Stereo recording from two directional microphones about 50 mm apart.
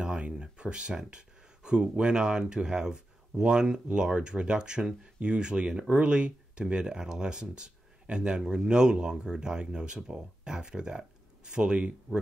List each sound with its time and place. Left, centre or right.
0.0 s speech: centre